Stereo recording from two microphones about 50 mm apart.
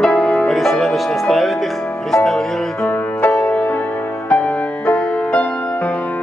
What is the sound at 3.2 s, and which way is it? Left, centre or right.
Music, left.